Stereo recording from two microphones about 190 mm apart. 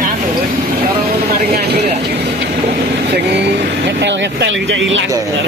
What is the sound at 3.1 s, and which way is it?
Speech, 65° right (ahead or behind).